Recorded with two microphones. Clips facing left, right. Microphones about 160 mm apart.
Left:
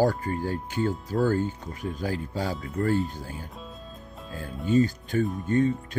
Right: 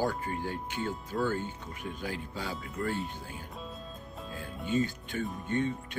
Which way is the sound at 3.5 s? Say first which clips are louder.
Left 1 dB; centre (ahead or behind).